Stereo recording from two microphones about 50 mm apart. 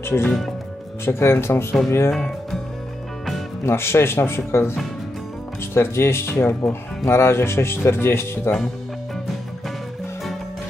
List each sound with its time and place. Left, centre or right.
0.0 s speech: left
3.6 s speech: left
5.8 s speech: left